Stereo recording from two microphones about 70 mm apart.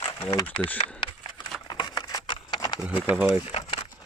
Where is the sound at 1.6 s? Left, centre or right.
Left.